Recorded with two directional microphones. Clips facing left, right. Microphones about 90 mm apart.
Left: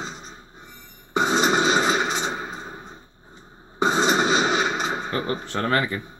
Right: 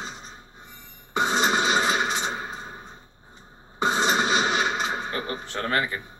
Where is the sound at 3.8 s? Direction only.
25° left (ahead or behind).